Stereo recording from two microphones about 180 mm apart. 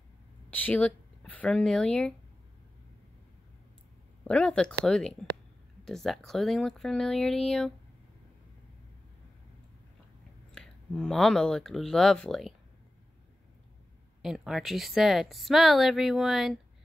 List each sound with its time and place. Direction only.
0.5 s speech: 10° left (ahead or behind)
4.2 s speech: 5° left (ahead or behind)
10.5 s speech: 5° left (ahead or behind)
14.2 s speech: centre (ahead or behind)